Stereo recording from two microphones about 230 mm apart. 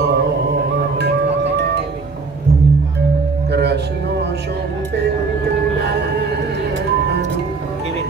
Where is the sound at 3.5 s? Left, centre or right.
Right.